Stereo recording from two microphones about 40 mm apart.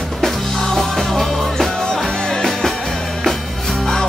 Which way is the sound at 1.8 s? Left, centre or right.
Centre.